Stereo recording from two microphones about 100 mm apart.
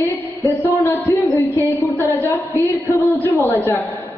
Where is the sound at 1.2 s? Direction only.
30° left (ahead or behind).